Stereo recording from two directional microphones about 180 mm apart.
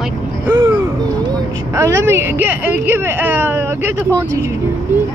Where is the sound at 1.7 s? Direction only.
15° right (ahead or behind).